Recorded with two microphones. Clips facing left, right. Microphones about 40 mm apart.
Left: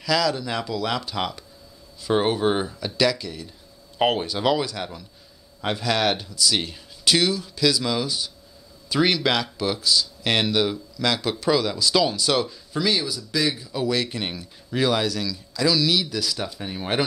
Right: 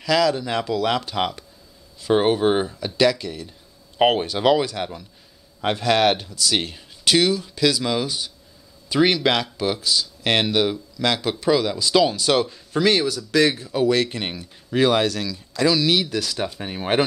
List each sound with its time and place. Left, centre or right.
0.0 s speech: right
3.2 s speech: right